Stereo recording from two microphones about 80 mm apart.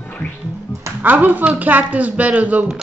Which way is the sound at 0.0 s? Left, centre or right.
Left.